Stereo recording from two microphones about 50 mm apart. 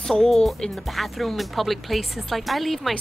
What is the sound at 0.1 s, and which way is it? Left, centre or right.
Speech, centre.